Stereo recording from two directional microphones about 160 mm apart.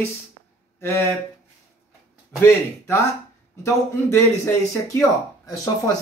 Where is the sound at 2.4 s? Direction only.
15° left (ahead or behind).